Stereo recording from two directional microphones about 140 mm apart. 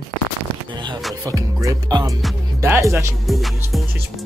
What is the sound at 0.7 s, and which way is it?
Speech, 35° right (ahead or behind).